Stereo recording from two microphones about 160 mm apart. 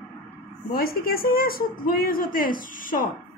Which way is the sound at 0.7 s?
70° left (ahead or behind).